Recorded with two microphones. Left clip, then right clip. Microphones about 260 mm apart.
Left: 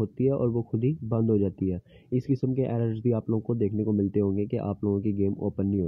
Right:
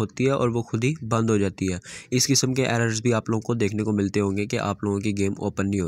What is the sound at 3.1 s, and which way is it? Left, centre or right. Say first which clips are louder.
Speech: right 4 dB; right.